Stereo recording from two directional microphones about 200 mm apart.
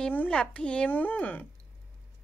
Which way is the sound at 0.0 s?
5° left (ahead or behind).